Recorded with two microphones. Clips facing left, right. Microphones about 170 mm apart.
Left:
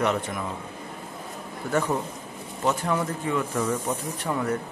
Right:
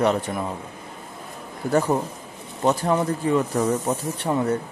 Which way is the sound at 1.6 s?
35° right (ahead or behind).